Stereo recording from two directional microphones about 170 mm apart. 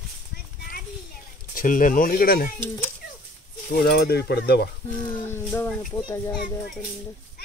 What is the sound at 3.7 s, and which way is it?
Stir, 70° left (ahead or behind).